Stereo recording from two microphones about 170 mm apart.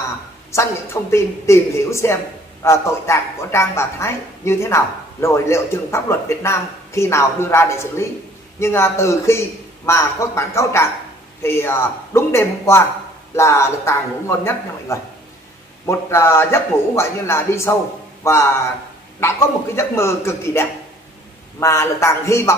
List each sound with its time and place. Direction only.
1.1 s a woman's voice: 15° left (ahead or behind)